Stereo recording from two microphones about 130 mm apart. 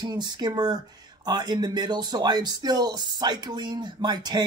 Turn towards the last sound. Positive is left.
turn(degrees=-35)  # may be behind; listen again after turning